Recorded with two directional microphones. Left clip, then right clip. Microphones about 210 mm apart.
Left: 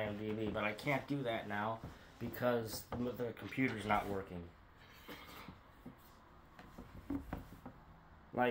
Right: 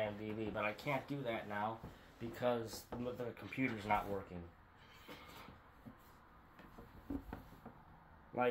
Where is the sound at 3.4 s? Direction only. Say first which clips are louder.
Left 2 dB; 10° left (ahead or behind).